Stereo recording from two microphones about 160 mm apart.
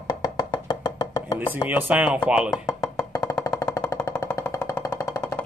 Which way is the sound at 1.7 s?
10° right (ahead or behind).